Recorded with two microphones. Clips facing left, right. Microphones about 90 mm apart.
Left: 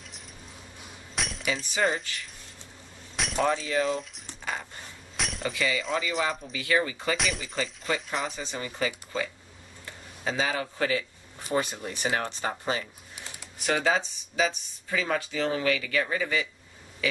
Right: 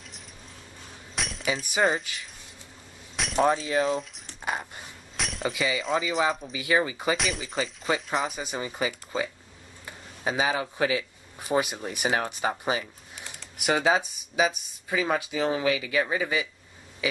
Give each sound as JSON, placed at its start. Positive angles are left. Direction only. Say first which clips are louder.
{"t": 1.1, "sound": "glass", "louder": "even", "side_deg": 0}
{"t": 1.6, "sound": "speech", "louder": "right 3 dB", "side_deg": -10}
{"t": 3.2, "sound": "chink", "louder": "even", "side_deg": 0}
{"t": 3.7, "sound": "speech", "louder": "right 2 dB", "side_deg": 0}
{"t": 5.1, "sound": "chink", "louder": "right 2 dB", "side_deg": 0}
{"t": 5.5, "sound": "speech", "louder": "right 2 dB", "side_deg": -10}
{"t": 6.5, "sound": "speech", "louder": "right 2 dB", "side_deg": -15}
{"t": 7.2, "sound": "speech", "louder": "right 1 dB", "side_deg": 0}
{"t": 8.4, "sound": "speech", "louder": "right 1 dB", "side_deg": -15}
{"t": 17.0, "sound": "a sound", "louder": "even", "side_deg": -15}